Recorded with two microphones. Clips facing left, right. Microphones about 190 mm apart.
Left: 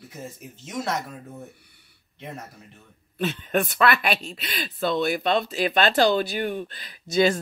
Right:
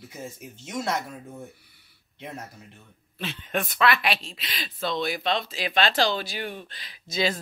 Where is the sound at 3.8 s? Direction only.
45° left (ahead or behind).